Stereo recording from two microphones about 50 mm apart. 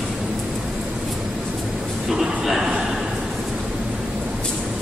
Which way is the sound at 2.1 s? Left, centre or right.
Centre.